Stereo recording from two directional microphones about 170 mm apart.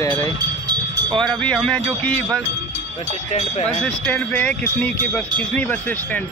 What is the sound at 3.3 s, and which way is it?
Speech, 40° left (ahead or behind).